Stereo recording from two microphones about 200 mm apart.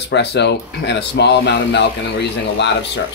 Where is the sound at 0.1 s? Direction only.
60° left (ahead or behind).